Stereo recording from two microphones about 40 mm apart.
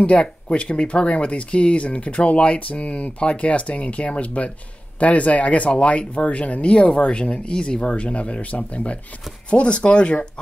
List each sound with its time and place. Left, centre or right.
0.0 s speech: left